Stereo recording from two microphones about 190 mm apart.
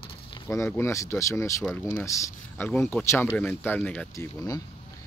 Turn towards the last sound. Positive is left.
turn(degrees=15)  # may be behind; listen again after turning